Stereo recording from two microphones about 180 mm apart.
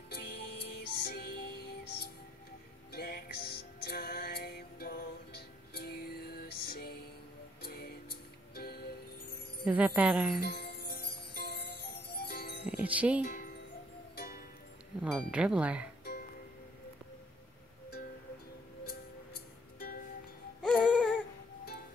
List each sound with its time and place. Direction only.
0.1 s music: 65° left (ahead or behind)
2.9 s music: 60° left (ahead or behind)
9.7 s speech: 10° right (ahead or behind)
10.4 s jingle bell: 60° left (ahead or behind)
12.6 s music: 5° right (ahead or behind)
14.1 s music: 60° left (ahead or behind)
15.0 s speech: 5° right (ahead or behind)
16.0 s music: 60° left (ahead or behind)
20.6 s music: 5° left (ahead or behind)